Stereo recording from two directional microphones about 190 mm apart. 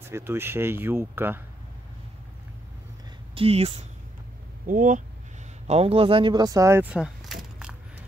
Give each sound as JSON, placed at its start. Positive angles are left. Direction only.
{"t": 0.1, "sound": "speech", "side_deg": -15}
{"t": 3.3, "sound": "speech", "side_deg": -30}
{"t": 4.6, "sound": "speech", "side_deg": -45}
{"t": 5.7, "sound": "speech", "side_deg": -30}